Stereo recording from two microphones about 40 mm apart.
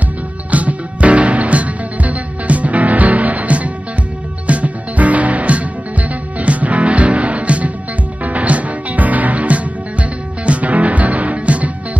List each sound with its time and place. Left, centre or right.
0.5 s music: right